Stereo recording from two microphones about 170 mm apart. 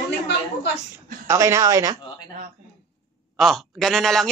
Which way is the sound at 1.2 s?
20° right (ahead or behind).